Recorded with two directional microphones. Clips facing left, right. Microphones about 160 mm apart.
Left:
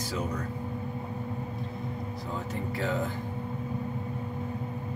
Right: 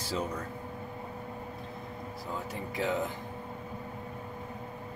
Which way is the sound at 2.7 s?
15° right (ahead or behind).